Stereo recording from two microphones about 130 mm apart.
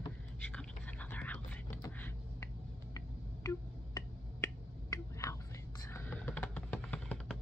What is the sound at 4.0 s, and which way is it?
Finger snapping, 25° left (ahead or behind).